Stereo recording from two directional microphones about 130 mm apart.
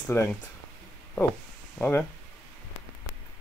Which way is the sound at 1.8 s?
15° left (ahead or behind).